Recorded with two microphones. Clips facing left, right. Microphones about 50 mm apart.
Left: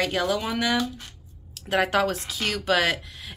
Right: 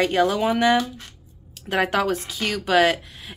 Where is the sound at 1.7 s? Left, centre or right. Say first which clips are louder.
Right 1 dB; centre.